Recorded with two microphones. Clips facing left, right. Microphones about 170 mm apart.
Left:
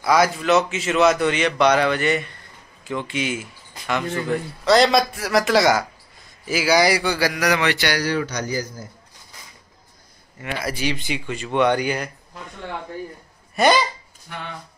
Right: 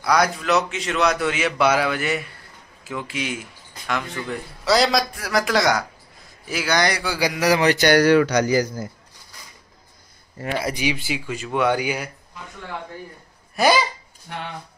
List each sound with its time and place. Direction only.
0.0 s speech: centre (ahead or behind)
7.2 s a sound: 15° right (ahead or behind)
7.4 s a man's voice: 35° right (ahead or behind); by 8.8 s 80° right
10.6 s speech: 15° right (ahead or behind)
13.6 s speech: 5° right (ahead or behind)